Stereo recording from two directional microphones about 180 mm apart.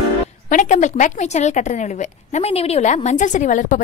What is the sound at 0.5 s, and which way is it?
A woman's voice, 45° left (ahead or behind).